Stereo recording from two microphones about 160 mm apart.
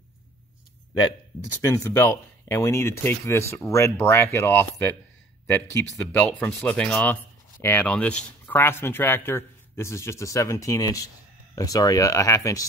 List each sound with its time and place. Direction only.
1.4 s speech: 15° left (ahead or behind)
6.1 s speech: 10° left (ahead or behind)